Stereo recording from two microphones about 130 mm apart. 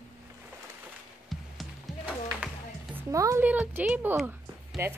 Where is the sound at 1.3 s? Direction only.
Centre (ahead or behind).